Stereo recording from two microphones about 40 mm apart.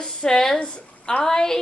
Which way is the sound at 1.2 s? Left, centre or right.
Centre.